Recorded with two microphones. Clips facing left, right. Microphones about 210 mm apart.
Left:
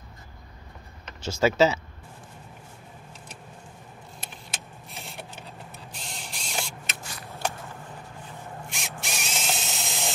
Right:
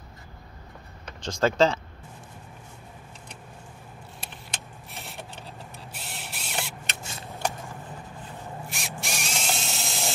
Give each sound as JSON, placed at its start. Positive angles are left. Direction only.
{"t": 1.2, "sound": "speech", "side_deg": 5}
{"t": 4.2, "sound": "vehicle", "side_deg": 0}
{"t": 5.9, "sound": "a sound", "side_deg": -5}
{"t": 7.0, "sound": "shuffling cards", "side_deg": -25}
{"t": 8.6, "sound": "drill", "side_deg": 0}